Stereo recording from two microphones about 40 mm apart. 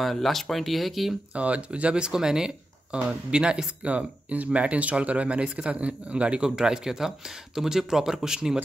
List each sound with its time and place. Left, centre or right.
0.0 s speech: centre
1.3 s speech: right; by 8.5 s centre